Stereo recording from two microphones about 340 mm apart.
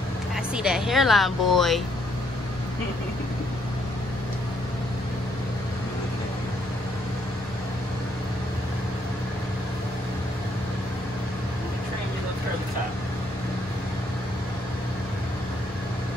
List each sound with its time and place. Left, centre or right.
0.6 s speech: centre